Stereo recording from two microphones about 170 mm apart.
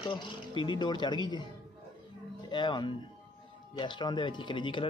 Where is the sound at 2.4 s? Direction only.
25° left (ahead or behind).